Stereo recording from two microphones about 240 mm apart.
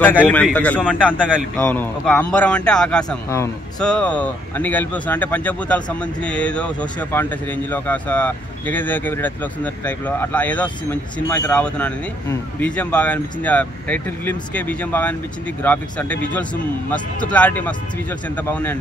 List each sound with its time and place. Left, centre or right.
0.0 s a man's voice: centre